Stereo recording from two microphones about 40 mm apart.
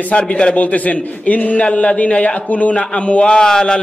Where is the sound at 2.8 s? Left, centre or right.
Left.